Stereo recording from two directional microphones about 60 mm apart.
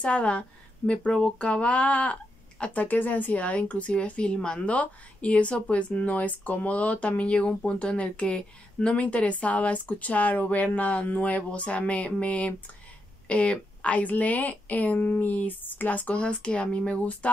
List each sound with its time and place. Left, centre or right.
0.0 s speech: centre
16.2 s speech: centre